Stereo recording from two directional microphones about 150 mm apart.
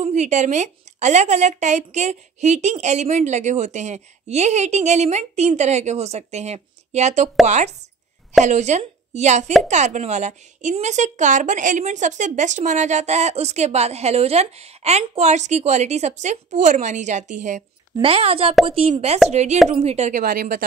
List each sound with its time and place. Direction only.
0.0 s a woman's voice: 50° right (ahead or behind)
18.0 s a woman's voice: 40° right (ahead or behind); by 20.6 s 65° right (ahead or behind)